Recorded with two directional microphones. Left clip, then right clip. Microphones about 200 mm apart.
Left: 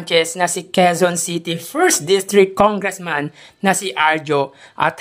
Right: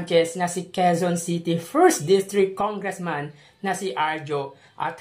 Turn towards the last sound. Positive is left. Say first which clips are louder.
# left 11 dB
turn(degrees=45)  # may be behind; listen again after turning